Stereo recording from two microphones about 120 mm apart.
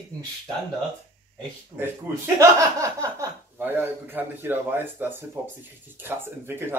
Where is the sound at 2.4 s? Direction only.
25° right (ahead or behind).